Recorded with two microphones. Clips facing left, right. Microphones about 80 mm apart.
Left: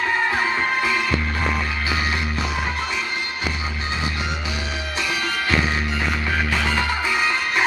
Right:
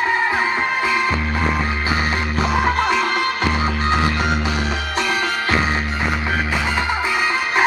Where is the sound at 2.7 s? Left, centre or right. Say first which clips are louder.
Right 8 dB; right.